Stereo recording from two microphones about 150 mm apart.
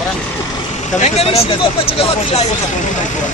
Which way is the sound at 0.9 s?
45° left (ahead or behind).